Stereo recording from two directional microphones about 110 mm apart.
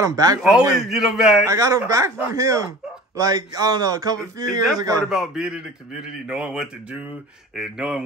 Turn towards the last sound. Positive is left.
turn(degrees=-5)  # may be behind; listen again after turning